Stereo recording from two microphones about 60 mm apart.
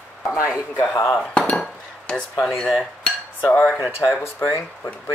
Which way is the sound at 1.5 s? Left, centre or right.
Left.